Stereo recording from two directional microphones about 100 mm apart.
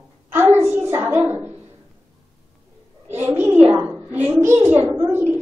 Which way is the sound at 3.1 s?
20° right (ahead or behind).